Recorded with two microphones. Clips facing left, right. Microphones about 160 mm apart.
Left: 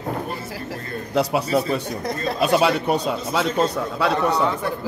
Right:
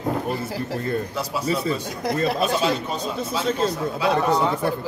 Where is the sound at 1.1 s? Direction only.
70° left (ahead or behind).